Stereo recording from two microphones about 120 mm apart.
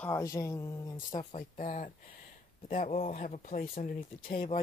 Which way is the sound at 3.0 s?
70° left (ahead or behind).